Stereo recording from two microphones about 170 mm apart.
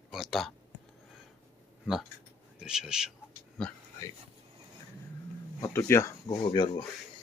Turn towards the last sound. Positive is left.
turn(degrees=25)  # may be behind; listen again after turning